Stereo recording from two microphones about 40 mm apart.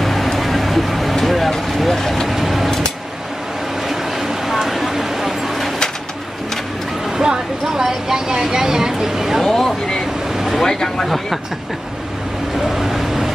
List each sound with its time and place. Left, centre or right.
0.0 s vehicle: centre
3.9 s vehicle: centre
7.2 s vehicle: centre
9.4 s a sound: centre
10.3 s vehicle: centre
10.6 s a sound: centre
12.5 s vehicle: centre